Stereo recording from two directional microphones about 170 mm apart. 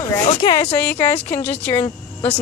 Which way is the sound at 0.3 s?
25° left (ahead or behind).